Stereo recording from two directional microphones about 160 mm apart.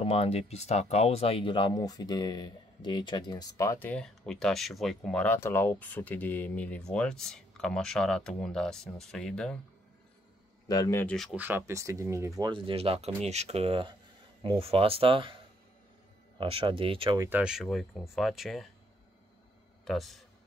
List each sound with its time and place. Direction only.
0.0 s speech: 40° left (ahead or behind); by 9.6 s 5° left (ahead or behind)
10.7 s speech: 20° left (ahead or behind)
11.3 s speech: 10° right (ahead or behind)
12.4 s speech: 30° right (ahead or behind)
17.2 s speech: 10° right (ahead or behind)
19.8 s a man's voice: centre (ahead or behind)